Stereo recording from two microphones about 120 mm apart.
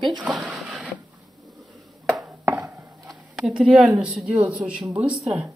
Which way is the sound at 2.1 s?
15° right (ahead or behind).